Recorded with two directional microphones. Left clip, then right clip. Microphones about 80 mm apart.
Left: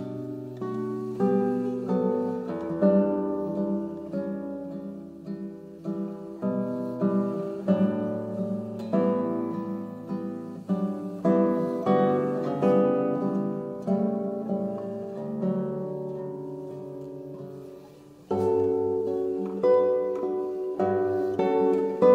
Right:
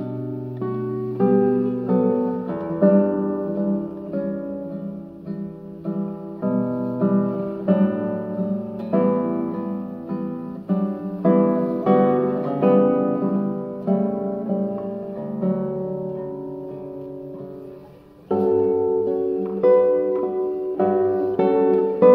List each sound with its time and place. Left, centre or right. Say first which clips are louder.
0.6 s music: right 5 dB; left
5.9 s music: right 5 dB; left
8.9 s music: right 5 dB; left
18.3 s music: right 5 dB; left